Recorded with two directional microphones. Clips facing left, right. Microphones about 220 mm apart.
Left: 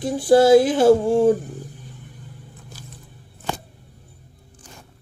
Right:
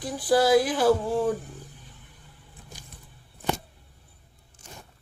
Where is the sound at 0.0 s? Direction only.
25° left (ahead or behind).